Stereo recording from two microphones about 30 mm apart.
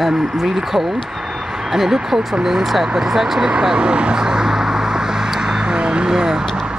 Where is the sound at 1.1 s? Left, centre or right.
Centre.